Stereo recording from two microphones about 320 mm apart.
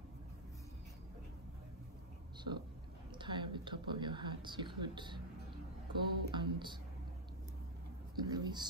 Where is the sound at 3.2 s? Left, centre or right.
Centre.